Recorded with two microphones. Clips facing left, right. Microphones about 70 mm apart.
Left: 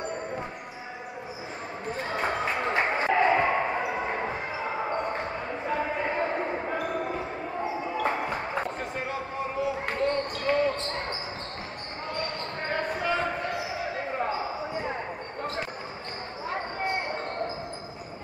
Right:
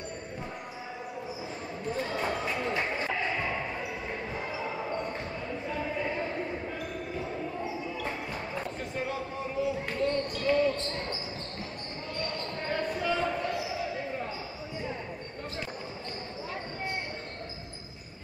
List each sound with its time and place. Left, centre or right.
1.9 s basketball bounce: left
8.9 s a sound: left
9.8 s basketball bounce: left
12.2 s basketball bounce: left
16.4 s basketball bounce: left